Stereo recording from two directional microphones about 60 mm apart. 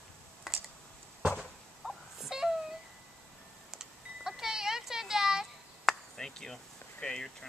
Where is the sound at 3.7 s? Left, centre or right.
Centre.